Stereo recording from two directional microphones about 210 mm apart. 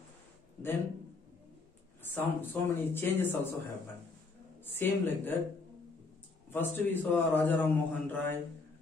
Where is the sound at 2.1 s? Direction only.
10° left (ahead or behind).